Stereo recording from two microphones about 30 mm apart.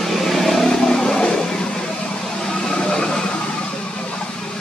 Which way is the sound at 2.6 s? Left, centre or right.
Left.